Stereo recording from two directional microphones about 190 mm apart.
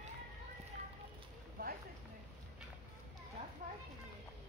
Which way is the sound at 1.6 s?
50° right (ahead or behind).